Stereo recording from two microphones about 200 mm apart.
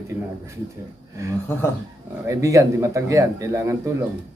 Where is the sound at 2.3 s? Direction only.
15° right (ahead or behind).